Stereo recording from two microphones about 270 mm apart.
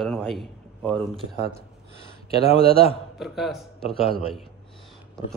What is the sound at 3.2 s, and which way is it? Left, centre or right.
A man's voice, centre.